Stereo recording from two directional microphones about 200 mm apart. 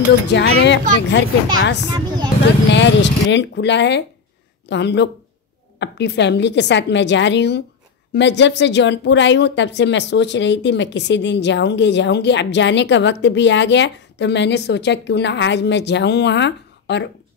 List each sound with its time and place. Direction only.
0.3 s speech: 60° left (ahead or behind)
1.9 s a sound: 20° right (ahead or behind)
2.7 s speech: 60° left (ahead or behind)